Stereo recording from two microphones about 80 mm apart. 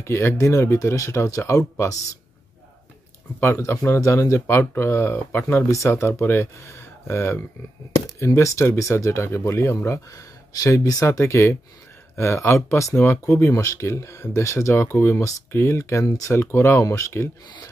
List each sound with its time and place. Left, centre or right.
0.0 s speech: left
3.3 s speech: left